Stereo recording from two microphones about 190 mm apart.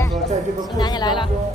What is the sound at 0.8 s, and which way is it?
Speech, 20° left (ahead or behind).